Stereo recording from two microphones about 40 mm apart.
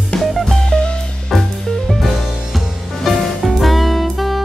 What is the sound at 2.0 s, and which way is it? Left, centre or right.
Music, centre.